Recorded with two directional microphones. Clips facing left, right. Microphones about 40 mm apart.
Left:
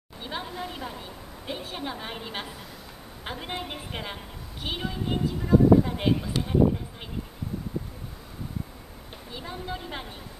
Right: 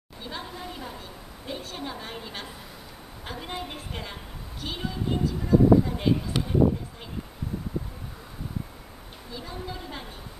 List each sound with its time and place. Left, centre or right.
0.2 s a woman's voice: left
9.3 s a woman's voice: left